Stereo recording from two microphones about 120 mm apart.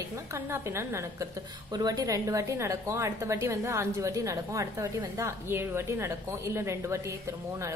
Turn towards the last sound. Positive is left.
turn(degrees=-25)  # may be behind; listen again after turning